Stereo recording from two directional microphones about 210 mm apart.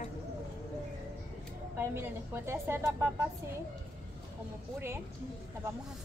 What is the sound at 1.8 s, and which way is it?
Speech, 10° right (ahead or behind).